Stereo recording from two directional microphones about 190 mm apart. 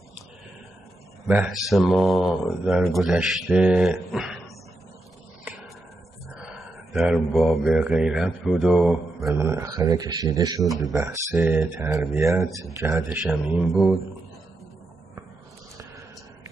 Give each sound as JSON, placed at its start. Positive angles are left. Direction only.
{"t": 1.2, "sound": "a man's voice", "side_deg": -5}
{"t": 6.2, "sound": "speech", "side_deg": 0}
{"t": 13.2, "sound": "speech", "side_deg": 0}